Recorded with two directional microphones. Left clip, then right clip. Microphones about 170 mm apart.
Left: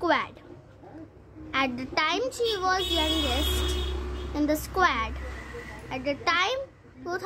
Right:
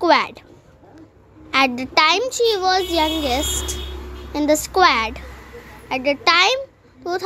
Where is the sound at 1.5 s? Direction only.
30° right (ahead or behind).